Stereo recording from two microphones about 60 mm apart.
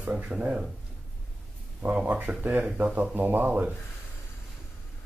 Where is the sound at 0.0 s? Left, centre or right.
Centre.